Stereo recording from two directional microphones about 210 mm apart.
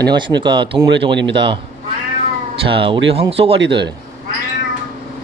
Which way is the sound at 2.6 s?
25° right (ahead or behind).